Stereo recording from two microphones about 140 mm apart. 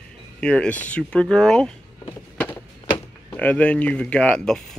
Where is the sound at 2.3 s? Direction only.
15° left (ahead or behind).